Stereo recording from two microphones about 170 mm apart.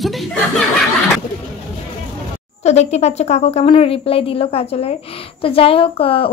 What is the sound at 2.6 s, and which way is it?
A woman's voice, 40° left (ahead or behind).